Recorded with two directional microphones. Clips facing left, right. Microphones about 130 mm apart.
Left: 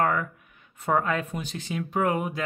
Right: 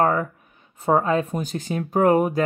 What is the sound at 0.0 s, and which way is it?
Speech, 30° right (ahead or behind).